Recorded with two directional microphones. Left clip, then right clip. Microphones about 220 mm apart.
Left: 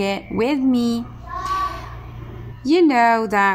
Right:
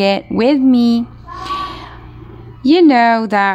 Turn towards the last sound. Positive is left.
turn(degrees=-35)  # may be behind; listen again after turning